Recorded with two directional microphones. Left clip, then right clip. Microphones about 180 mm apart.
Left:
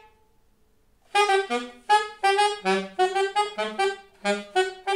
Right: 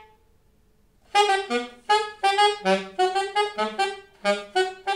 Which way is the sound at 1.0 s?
40° right (ahead or behind).